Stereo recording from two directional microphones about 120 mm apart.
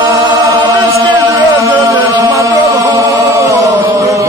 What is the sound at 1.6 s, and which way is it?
Chant, 25° right (ahead or behind).